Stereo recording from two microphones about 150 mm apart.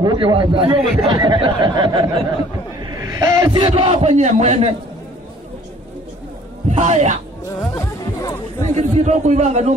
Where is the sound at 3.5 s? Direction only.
35° right (ahead or behind).